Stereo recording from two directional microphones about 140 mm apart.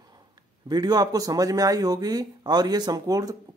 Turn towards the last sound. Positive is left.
turn(degrees=-25)  # may be behind; listen again after turning